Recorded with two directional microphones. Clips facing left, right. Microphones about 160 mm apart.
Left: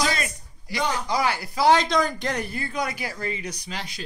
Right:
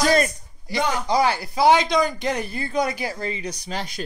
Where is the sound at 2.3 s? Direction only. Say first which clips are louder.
Right 4 dB; 25° right (ahead or behind).